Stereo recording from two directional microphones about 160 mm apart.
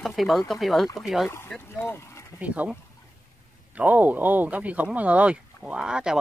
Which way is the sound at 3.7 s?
10° right (ahead or behind).